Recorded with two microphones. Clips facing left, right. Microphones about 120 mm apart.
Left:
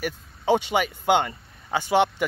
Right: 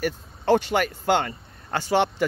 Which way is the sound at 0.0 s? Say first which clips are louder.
Right 2 dB; 15° left (ahead or behind).